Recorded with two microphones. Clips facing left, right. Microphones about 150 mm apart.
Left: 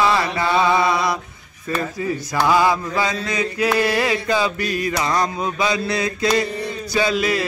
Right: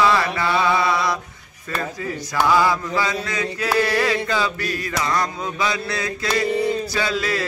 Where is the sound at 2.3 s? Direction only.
15° left (ahead or behind).